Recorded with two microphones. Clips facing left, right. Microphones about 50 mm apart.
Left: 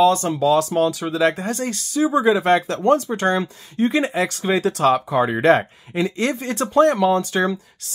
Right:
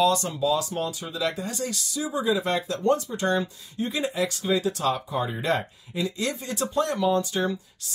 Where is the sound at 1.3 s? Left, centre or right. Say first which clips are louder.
Left 7 dB; left.